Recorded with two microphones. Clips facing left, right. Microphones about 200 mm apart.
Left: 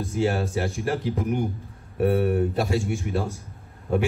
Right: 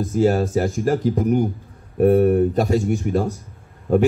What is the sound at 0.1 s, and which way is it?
A man's voice, 40° right (ahead or behind).